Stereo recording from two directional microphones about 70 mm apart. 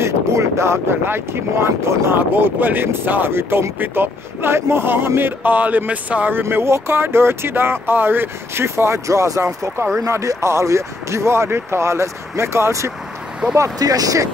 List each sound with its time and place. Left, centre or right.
0.0 s speech: right
6.5 s speech: right
13.6 s speech: right